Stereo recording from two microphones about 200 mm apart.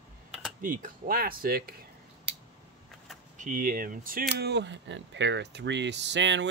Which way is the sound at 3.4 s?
40° right (ahead or behind).